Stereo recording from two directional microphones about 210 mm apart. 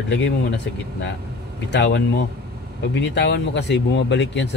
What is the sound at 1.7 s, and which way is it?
Speech, 55° left (ahead or behind).